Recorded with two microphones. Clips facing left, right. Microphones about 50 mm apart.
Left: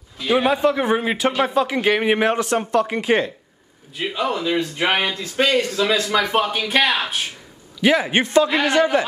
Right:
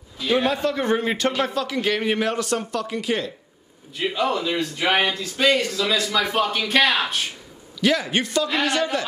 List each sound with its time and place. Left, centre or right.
0.2 s a man's voice: centre; by 3.3 s left
3.9 s a man's voice: centre; by 6.4 s left
6.4 s a man's voice: centre
7.8 s a man's voice: left